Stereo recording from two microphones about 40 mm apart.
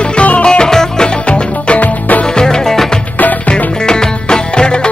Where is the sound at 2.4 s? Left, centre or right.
Centre.